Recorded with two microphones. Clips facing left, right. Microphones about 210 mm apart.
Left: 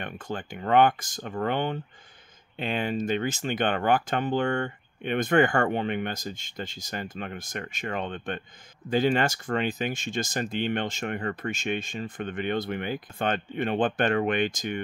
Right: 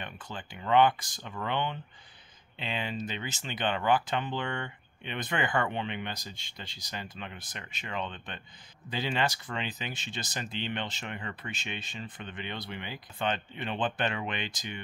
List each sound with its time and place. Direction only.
0.0 s speech: 50° left (ahead or behind)